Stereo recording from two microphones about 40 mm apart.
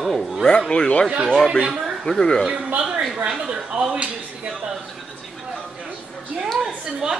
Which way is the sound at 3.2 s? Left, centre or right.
Centre.